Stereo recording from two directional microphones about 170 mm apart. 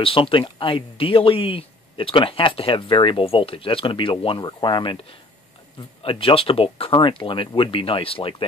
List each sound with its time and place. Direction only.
0.0 s speech: 30° left (ahead or behind)
6.0 s speech: 30° left (ahead or behind)